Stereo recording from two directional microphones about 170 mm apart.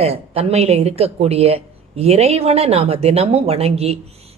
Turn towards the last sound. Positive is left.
turn(degrees=-35)  # may be behind; listen again after turning